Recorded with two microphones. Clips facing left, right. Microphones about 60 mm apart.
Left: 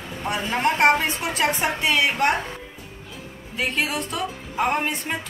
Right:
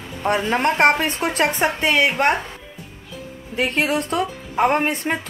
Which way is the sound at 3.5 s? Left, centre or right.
Right.